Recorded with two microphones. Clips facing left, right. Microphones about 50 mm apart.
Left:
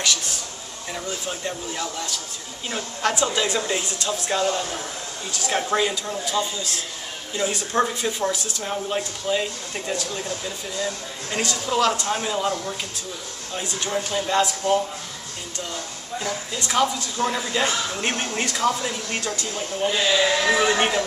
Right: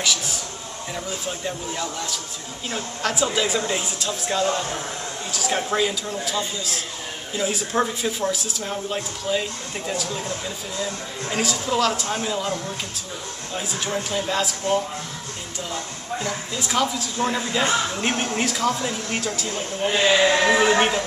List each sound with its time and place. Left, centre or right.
0.0 s a man's voice: centre
13.6 s speech: centre
16.3 s speech: centre
19.8 s a man's voice: right
20.5 s speech: centre